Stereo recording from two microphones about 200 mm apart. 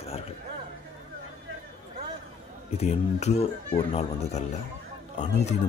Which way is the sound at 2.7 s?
30° left (ahead or behind).